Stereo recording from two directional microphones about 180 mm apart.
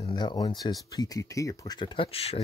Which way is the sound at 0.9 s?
20° left (ahead or behind).